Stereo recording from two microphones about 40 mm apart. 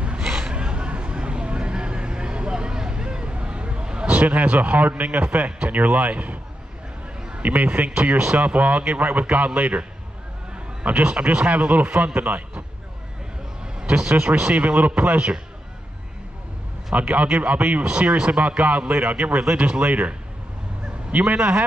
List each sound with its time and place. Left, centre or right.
0.0 s a sound: right
4.1 s a man's voice: right
7.2 s a sound: right
7.4 s a man's voice: right
10.5 s a sound: right
11.3 s a man's voice: right
13.7 s a sound: right
14.2 s a man's voice: right
16.9 s a man's voice: right
17.8 s a man's voice: right
19.4 s a man's voice: right
21.1 s a man's voice: right
21.4 s speech: right